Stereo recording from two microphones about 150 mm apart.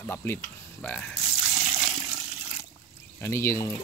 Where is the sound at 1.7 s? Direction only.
10° right (ahead or behind).